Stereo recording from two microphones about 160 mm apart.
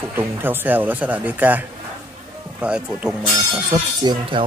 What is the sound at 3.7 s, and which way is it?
Speech, 25° right (ahead or behind).